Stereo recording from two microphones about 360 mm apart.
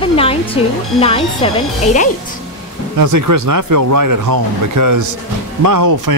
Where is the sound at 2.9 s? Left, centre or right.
Right.